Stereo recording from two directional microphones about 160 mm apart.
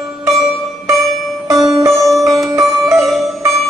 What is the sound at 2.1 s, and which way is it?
Music, centre (ahead or behind).